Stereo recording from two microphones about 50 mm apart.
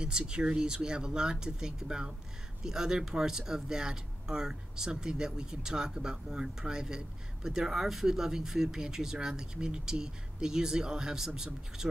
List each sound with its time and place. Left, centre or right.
0.0 s speech: centre